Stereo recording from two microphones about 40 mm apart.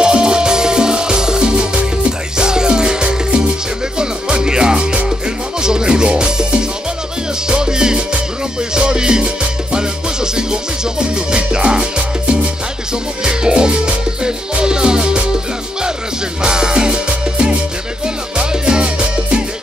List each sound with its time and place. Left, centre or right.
0.0 s music: centre
16.4 s music: centre